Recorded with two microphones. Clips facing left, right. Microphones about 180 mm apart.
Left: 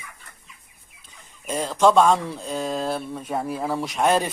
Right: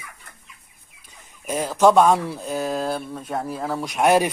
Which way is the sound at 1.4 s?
10° right (ahead or behind).